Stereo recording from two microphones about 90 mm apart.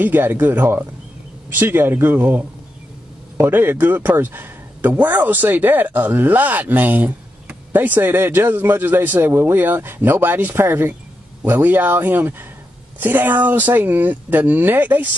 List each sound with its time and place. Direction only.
0.0 s speech: 20° right (ahead or behind)